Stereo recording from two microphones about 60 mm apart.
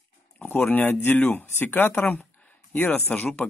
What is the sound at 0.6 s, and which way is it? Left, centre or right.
Speech, left.